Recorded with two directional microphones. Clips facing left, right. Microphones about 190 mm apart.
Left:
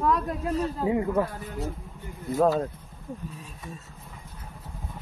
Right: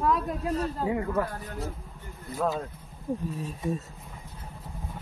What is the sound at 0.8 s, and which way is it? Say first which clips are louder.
Speech: left 4 dB; 20° left (ahead or behind).